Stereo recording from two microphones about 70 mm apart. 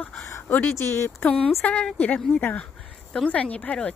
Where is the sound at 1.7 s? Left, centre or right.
Centre.